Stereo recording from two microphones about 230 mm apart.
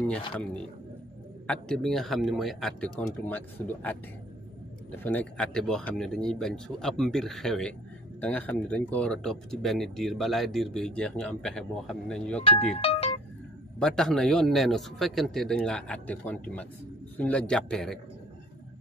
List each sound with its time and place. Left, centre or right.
1.5 s speech: centre
4.9 s speech: centre
12.4 s speech: left
13.7 s speech: centre